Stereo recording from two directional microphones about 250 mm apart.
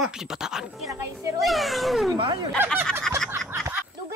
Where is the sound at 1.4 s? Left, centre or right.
Centre.